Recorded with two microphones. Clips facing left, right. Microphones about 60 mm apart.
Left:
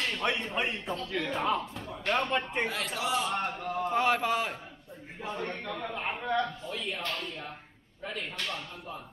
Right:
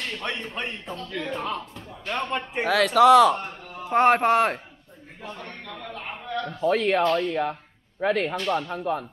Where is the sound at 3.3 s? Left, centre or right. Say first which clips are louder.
Left 2 dB; left.